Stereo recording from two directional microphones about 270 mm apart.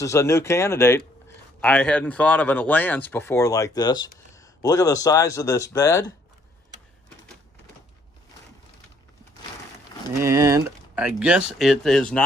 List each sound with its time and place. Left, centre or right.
0.0 s speech: centre
10.2 s speech: centre